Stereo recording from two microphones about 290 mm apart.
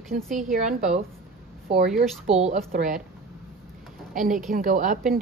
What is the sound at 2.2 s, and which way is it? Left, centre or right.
Speech, right.